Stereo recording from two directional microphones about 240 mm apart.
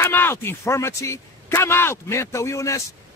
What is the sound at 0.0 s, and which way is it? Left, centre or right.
Speech, centre.